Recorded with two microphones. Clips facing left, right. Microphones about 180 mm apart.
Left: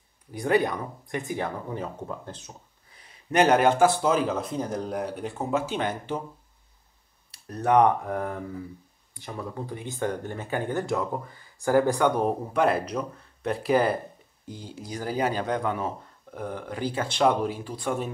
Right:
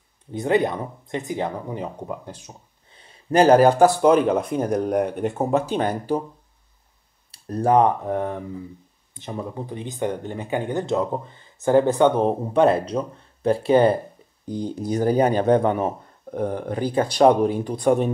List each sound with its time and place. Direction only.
0.3 s speech: 20° right (ahead or behind)
2.9 s speech: 30° right (ahead or behind); by 4.2 s 50° right (ahead or behind)
4.6 s speech: 65° right (ahead or behind); by 6.2 s 40° right (ahead or behind)
7.2 s speech: 30° right (ahead or behind)
15.1 s speech: 35° right (ahead or behind)
15.8 s speech: 45° right (ahead or behind)